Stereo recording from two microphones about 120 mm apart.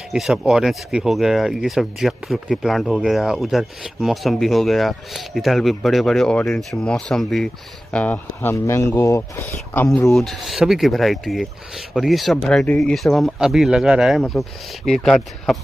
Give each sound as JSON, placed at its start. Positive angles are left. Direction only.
{"t": 0.1, "sound": "speech", "side_deg": -5}
{"t": 10.1, "sound": "speech", "side_deg": 0}